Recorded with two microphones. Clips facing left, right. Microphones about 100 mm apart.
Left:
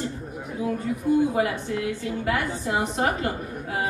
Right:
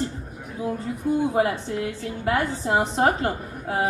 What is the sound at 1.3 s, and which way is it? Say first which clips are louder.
A woman's voice: right 2 dB; 30° right (ahead or behind).